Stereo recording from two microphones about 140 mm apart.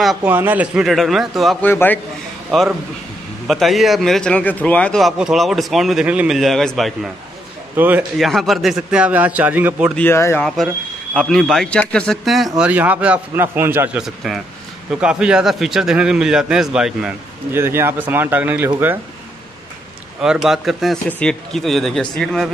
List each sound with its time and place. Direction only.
0.0 s a man's voice: centre (ahead or behind)
0.3 s a man's voice: 15° right (ahead or behind)
1.6 s speech: 15° left (ahead or behind)
3.4 s a man's voice: centre (ahead or behind)
7.7 s a man's voice: 15° right (ahead or behind)
8.2 s a man's voice: centre (ahead or behind)
9.9 s speech: 15° left (ahead or behind)
11.1 s a man's voice: centre (ahead or behind); by 13.8 s 15° right (ahead or behind)
13.9 s a man's voice: centre (ahead or behind)
17.5 s a man's voice: 15° right (ahead or behind)
20.2 s a man's voice: 5° right (ahead or behind)